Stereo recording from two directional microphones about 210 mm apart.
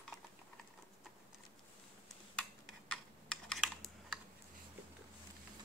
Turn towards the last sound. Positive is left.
turn(degrees=0)  # may be behind; listen again after turning